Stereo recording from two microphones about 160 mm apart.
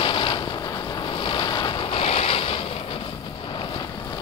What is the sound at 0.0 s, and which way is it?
Boat, 30° left (ahead or behind).